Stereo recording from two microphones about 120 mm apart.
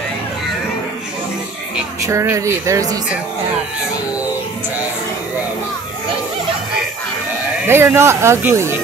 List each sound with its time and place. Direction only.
2.0 s speech: 25° right (ahead or behind)
7.6 s speech: 20° right (ahead or behind)